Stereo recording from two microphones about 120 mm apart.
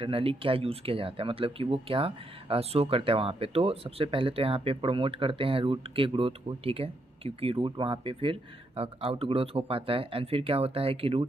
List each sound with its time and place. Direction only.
0.0 s speech: 50° right (ahead or behind)